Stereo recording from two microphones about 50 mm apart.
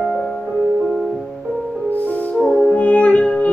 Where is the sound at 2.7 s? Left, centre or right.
Left.